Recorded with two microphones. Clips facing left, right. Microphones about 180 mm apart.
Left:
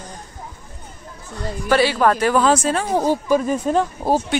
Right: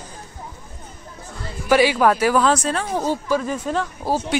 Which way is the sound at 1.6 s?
10° right (ahead or behind).